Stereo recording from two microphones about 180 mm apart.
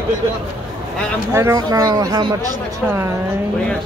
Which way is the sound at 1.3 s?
15° right (ahead or behind).